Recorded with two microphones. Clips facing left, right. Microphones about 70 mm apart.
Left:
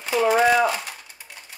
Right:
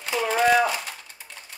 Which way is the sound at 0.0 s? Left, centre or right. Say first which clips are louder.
Left 4 dB; centre.